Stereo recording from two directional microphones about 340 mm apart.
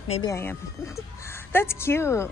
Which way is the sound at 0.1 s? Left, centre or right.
Centre.